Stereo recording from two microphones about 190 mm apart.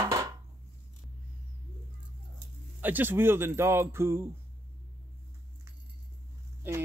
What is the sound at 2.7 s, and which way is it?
Speech, 10° right (ahead or behind).